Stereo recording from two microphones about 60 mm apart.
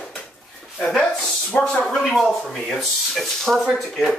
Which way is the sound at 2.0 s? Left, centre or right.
Centre.